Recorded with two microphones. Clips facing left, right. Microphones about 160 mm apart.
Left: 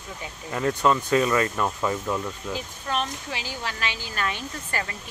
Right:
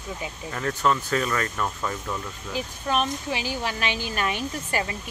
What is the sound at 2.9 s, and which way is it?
Speech, 15° right (ahead or behind).